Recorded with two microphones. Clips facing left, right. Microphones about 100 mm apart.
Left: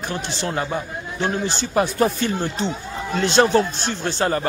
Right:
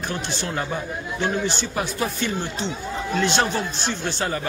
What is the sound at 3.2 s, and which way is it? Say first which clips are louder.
Speech: left 6 dB; 30° left (ahead or behind).